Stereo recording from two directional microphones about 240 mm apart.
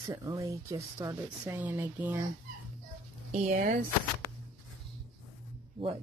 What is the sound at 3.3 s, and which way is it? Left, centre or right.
Speech, right.